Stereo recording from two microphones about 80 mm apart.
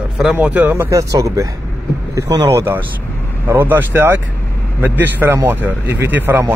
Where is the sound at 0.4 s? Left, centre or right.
Centre.